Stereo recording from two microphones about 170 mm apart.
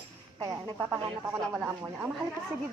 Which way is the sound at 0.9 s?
10° right (ahead or behind).